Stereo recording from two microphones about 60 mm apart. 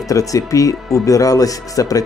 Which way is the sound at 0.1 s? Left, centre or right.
Left.